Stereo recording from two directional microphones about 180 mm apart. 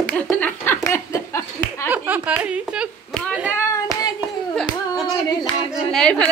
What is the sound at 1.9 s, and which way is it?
Speech, 10° right (ahead or behind).